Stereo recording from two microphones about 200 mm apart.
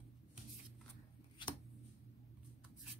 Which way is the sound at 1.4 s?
25° left (ahead or behind).